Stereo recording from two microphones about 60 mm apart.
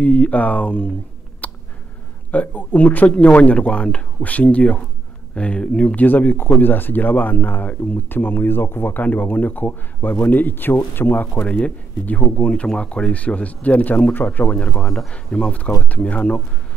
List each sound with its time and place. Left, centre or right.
0.0 s speech: left
1.4 s a sound: left
2.3 s speech: left
6.0 s speech: left
11.4 s speech: left
14.6 s speech: centre